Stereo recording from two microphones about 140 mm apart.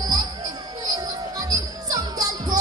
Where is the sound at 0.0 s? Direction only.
25° right (ahead or behind).